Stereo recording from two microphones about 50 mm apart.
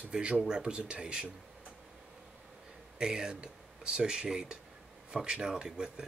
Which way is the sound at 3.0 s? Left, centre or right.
Centre.